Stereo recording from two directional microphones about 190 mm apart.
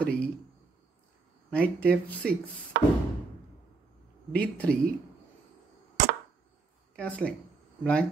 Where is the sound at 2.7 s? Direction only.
60° right (ahead or behind).